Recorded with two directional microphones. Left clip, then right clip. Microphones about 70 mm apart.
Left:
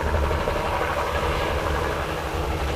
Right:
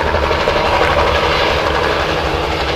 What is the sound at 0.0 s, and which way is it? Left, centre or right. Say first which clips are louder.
Vehicle: right 11 dB; left.